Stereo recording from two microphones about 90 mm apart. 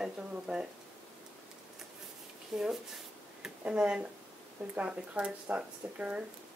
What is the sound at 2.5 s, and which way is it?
Speech, 5° right (ahead or behind).